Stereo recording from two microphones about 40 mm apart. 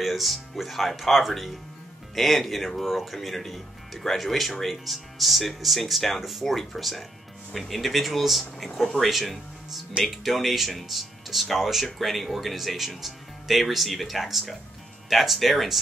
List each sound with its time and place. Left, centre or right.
0.0 s speech: centre